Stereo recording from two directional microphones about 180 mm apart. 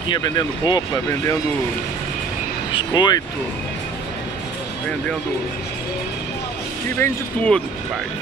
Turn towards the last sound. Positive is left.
turn(degrees=5)  # may be behind; listen again after turning